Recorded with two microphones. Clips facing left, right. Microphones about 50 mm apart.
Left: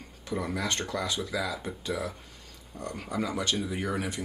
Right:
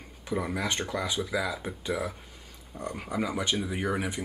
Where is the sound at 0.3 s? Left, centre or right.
Centre.